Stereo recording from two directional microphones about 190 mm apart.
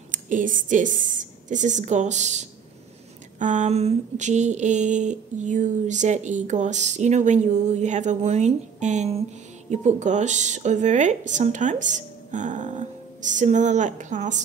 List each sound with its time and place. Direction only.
0.1 s speech: 45° right (ahead or behind)